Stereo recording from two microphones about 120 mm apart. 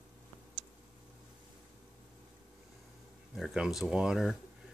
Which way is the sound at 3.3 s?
5° right (ahead or behind).